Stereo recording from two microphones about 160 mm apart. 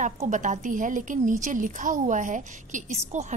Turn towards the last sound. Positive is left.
turn(degrees=-45)  # may be behind; listen again after turning